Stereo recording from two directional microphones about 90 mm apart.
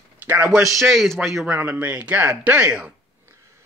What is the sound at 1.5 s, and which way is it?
Speech, 20° right (ahead or behind).